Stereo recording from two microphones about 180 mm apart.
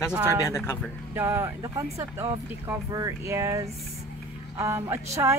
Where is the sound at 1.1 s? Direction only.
15° right (ahead or behind).